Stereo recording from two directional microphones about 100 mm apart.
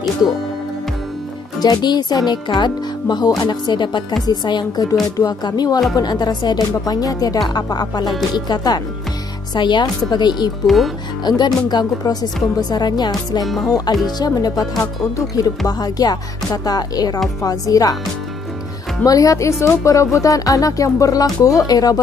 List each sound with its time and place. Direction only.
1.6 s speech: 45° left (ahead or behind)
13.4 s music: centre (ahead or behind)
13.7 s speech: 40° left (ahead or behind)
19.0 s speech: 35° left (ahead or behind)